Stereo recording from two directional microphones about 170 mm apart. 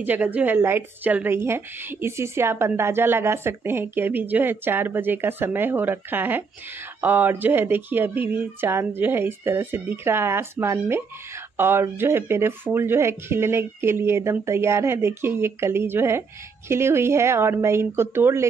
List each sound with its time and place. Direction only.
0.0 s a woman's voice: 10° right (ahead or behind)